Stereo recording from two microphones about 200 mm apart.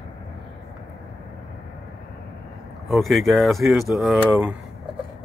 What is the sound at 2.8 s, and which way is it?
Speech, centre (ahead or behind).